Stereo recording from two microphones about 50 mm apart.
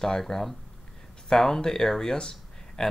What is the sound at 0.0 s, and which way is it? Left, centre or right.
Speech, centre.